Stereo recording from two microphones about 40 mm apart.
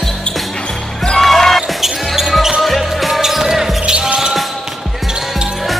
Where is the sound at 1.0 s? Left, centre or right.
Centre.